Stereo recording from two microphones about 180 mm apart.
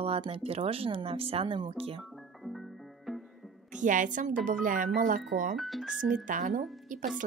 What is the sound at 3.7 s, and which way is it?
Speech, 45° right (ahead or behind).